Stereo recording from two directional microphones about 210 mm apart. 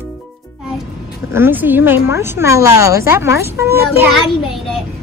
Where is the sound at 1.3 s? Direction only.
10° right (ahead or behind).